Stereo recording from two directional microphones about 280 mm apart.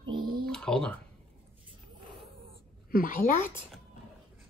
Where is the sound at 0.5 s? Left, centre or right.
Centre.